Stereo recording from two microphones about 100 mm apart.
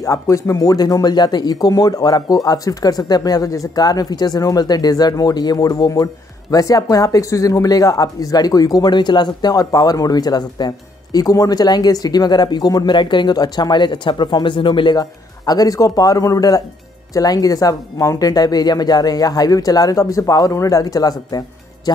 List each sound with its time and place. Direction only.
0.0 s speech: 30° left (ahead or behind)